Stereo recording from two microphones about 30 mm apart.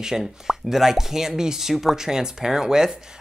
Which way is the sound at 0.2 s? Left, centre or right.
Centre.